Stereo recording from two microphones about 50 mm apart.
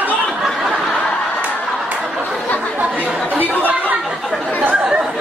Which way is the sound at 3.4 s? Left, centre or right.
Left.